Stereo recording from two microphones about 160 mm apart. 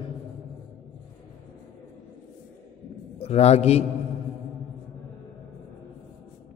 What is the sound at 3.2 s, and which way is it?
Speech, 40° left (ahead or behind).